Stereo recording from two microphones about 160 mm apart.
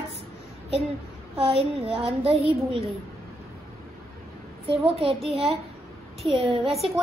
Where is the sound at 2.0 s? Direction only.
40° right (ahead or behind).